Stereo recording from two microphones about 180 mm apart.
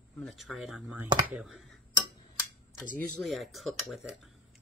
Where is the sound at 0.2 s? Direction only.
Centre (ahead or behind).